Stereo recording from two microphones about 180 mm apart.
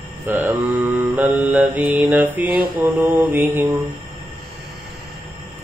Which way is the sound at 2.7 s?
20° right (ahead or behind).